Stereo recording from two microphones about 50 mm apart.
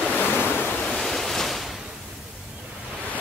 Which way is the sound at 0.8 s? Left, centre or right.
Centre.